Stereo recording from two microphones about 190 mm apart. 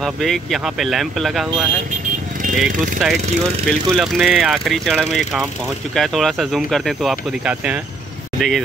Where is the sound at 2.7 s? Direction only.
45° right (ahead or behind).